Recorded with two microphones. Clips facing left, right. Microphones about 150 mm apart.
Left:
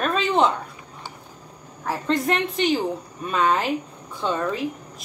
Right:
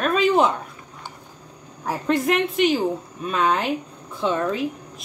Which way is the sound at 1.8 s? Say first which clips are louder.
Right 2 dB; 10° right (ahead or behind).